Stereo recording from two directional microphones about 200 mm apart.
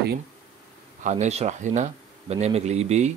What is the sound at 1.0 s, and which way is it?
Speech, 35° right (ahead or behind).